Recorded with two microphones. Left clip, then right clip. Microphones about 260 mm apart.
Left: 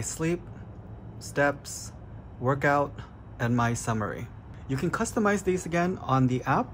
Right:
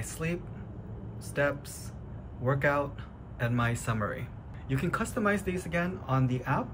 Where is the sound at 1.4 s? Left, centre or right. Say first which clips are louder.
Left 4 dB; centre.